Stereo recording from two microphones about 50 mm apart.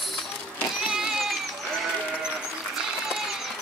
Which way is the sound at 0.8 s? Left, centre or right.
Centre.